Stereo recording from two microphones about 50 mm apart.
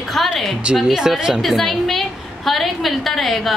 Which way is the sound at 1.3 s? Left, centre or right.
Centre.